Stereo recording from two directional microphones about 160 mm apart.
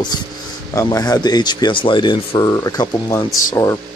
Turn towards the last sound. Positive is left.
turn(degrees=20)  # may be behind; listen again after turning